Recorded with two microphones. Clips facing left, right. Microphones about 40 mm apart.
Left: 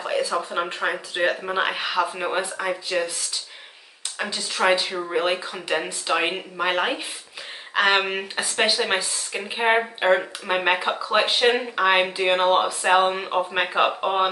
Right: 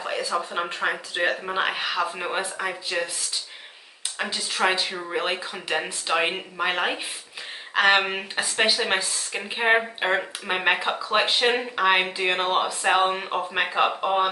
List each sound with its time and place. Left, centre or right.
0.0 s speech: centre
4.2 s speech: centre